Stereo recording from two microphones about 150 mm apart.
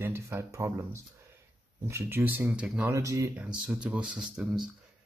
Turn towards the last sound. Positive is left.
turn(degrees=-5)  # may be behind; listen again after turning